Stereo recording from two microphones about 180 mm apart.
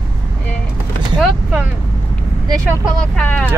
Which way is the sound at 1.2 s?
Centre (ahead or behind).